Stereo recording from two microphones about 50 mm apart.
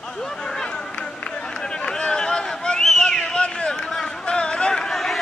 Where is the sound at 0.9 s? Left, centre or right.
Left.